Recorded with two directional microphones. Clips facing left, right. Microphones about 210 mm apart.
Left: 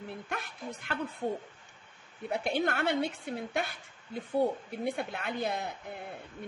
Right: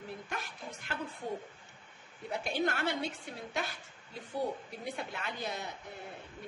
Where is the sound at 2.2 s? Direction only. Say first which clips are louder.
Left 3 dB; 60° left (ahead or behind).